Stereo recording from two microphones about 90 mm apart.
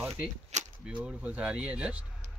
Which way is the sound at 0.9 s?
15° right (ahead or behind).